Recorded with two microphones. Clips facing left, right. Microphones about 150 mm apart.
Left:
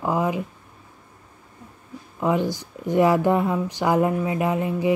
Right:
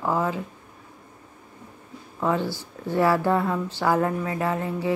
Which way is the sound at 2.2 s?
15° left (ahead or behind).